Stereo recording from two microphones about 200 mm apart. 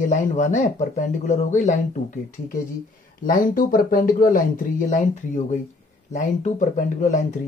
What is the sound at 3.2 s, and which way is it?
Speech, 45° left (ahead or behind).